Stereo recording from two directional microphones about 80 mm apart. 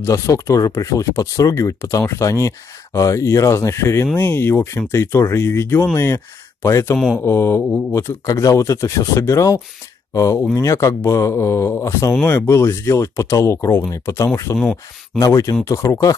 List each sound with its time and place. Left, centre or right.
0.0 s speech: left
8.3 s speech: left